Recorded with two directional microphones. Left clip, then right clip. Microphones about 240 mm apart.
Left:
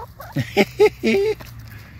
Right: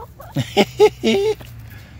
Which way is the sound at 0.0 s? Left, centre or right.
Centre.